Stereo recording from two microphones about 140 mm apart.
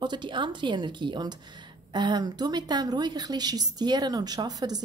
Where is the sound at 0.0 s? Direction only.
35° right (ahead or behind).